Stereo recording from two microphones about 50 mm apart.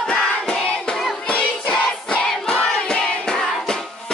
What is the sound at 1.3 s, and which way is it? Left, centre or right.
Music, left.